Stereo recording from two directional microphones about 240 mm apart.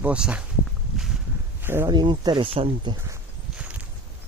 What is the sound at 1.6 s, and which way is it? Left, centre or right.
Speech, centre.